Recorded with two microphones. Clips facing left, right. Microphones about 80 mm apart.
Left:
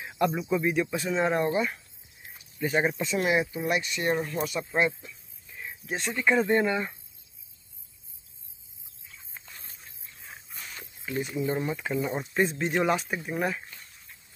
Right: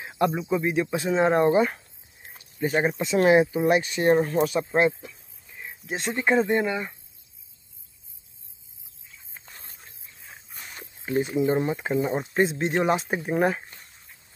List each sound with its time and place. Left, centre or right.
0.0 s a sound: right
0.3 s speech: centre; by 1.8 s right
2.8 s speech: right
3.2 s speech: right
4.6 s speech: right
6.4 s speech: centre
6.7 s speech: centre
9.5 s a sound: right
10.6 s speech: right